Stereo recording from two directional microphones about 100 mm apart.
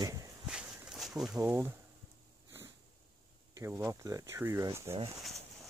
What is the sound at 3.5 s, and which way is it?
Speech, 25° right (ahead or behind).